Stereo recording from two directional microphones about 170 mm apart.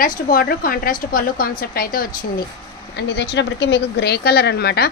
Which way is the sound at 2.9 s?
85° left.